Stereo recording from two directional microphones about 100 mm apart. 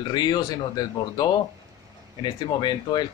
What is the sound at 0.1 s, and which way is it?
A man's voice, 45° left (ahead or behind).